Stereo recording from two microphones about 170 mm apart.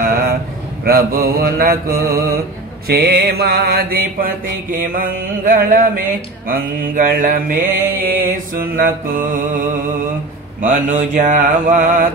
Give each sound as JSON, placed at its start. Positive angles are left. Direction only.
{"t": 0.0, "sound": "a sound", "side_deg": -60}
{"t": 0.8, "sound": "mantra", "side_deg": -60}
{"t": 10.6, "sound": "mantra", "side_deg": -50}